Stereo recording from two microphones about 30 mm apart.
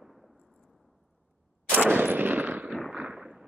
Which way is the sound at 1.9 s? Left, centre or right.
Right.